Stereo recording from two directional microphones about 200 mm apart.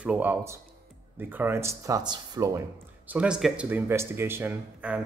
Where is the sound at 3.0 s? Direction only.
5° right (ahead or behind).